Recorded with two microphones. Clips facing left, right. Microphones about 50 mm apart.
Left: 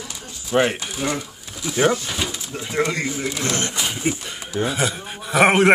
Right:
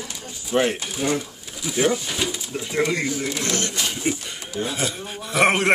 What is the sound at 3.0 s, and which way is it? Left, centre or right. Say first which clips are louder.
Speech: left 1 dB; centre.